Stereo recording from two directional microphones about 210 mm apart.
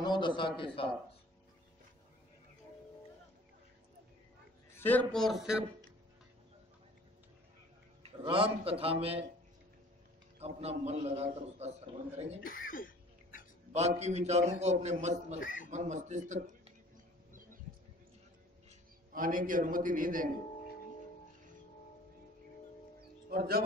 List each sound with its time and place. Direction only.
0.0 s a man's voice: 20° left (ahead or behind)
4.7 s a man's voice: 10° left (ahead or behind)
8.0 s a man's voice: 25° right (ahead or behind)
10.4 s a man's voice: 30° right (ahead or behind)
12.4 s cough: 40° left (ahead or behind)
13.7 s a man's voice: 30° right (ahead or behind)
15.4 s speech: 40° left (ahead or behind)
15.7 s a man's voice: 35° right (ahead or behind)
18.7 s a man's voice: 40° right (ahead or behind)
23.3 s speech: 45° right (ahead or behind)